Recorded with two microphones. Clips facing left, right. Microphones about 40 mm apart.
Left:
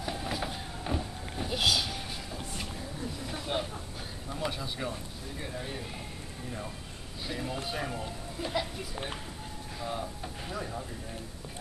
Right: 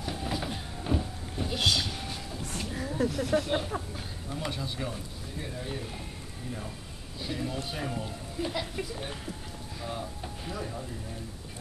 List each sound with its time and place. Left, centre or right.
0.0 s a sound: centre
2.3 s a sound: centre
2.8 s speech: right
4.4 s speech: centre
7.2 s speech: centre
8.9 s speech: centre
9.8 s speech: centre